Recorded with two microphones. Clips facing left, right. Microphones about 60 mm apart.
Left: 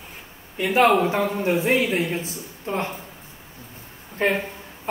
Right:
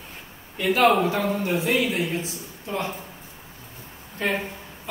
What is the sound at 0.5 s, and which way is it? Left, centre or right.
Speech, centre.